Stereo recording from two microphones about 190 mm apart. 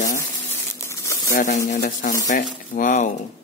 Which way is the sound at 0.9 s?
15° left (ahead or behind).